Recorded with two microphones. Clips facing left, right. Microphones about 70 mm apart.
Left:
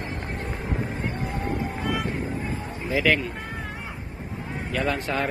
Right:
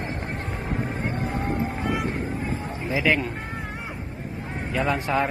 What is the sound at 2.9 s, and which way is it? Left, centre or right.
Speech, centre.